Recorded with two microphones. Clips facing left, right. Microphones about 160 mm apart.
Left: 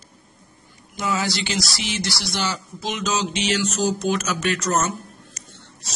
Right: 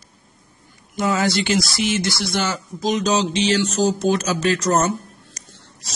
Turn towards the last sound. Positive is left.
turn(degrees=-35)  # may be behind; listen again after turning